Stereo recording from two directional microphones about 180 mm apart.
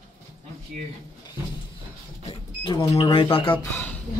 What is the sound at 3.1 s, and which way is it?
Speech, 30° left (ahead or behind).